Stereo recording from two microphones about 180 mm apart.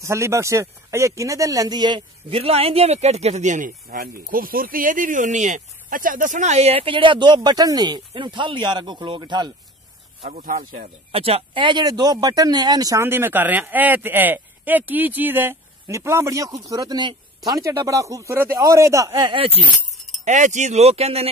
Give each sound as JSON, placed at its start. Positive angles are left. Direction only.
{"t": 0.0, "sound": "speech", "side_deg": -15}
{"t": 10.2, "sound": "speech", "side_deg": -50}
{"t": 11.1, "sound": "speech", "side_deg": -30}
{"t": 19.3, "sound": "speech", "side_deg": -30}
{"t": 20.2, "sound": "speech", "side_deg": -40}